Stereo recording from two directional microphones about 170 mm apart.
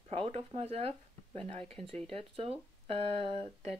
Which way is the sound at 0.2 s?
30° right (ahead or behind).